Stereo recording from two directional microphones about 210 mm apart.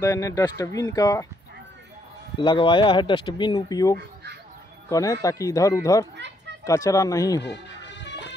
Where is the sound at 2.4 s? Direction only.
25° left (ahead or behind).